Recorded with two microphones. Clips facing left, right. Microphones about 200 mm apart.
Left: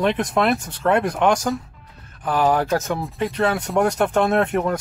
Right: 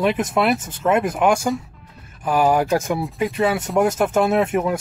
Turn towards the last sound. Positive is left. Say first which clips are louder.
# right 1 dB
turn(degrees=-5)  # may be behind; listen again after turning